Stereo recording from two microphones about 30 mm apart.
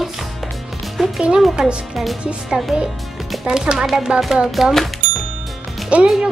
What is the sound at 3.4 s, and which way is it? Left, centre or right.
Speech, right.